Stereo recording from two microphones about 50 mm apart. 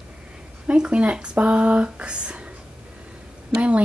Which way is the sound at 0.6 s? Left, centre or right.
Right.